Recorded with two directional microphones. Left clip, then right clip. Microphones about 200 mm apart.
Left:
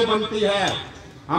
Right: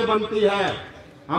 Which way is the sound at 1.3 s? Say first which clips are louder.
Left 2 dB; 40° right (ahead or behind).